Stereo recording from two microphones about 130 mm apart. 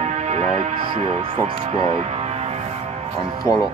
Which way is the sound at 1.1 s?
55° right (ahead or behind).